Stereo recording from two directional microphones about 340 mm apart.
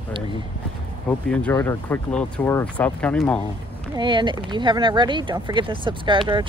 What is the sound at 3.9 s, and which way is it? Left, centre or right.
Speech, centre.